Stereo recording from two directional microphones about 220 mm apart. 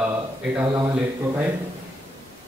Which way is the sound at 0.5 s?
15° right (ahead or behind).